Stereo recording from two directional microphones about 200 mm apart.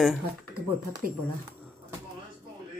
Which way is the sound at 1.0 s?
45° right (ahead or behind).